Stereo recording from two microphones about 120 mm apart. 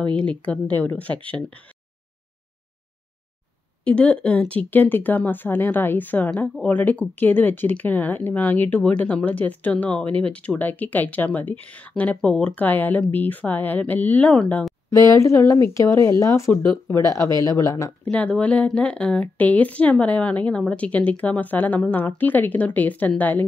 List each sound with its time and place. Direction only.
0.1 s speech: 10° left (ahead or behind)
3.8 s speech: 10° left (ahead or behind)
14.9 s speech: 25° left (ahead or behind)
17.2 s speech: 35° right (ahead or behind)
17.5 s speech: 25° left (ahead or behind)
18.0 s speech: 10° left (ahead or behind)